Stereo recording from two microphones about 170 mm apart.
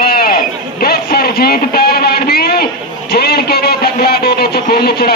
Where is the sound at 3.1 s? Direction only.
70° left (ahead or behind).